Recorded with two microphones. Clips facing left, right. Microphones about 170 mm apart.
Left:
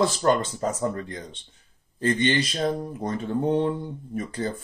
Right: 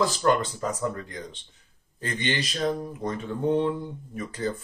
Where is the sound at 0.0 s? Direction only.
30° left (ahead or behind).